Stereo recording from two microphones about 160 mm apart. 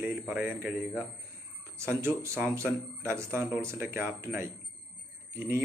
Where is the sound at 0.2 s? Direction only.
5° right (ahead or behind).